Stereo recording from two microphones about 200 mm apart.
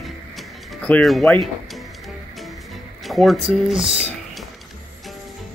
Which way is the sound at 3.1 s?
Centre (ahead or behind).